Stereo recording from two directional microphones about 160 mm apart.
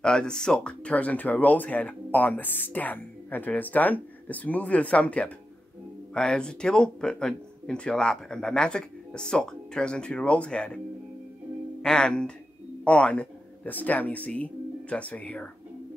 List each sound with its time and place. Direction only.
0.0 s speech: 5° left (ahead or behind)
11.8 s speech: 5° left (ahead or behind)